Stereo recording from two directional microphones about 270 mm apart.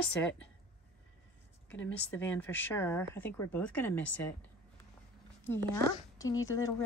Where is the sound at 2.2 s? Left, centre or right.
Centre.